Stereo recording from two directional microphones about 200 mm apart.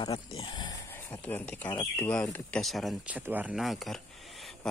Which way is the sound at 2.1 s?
5° left (ahead or behind).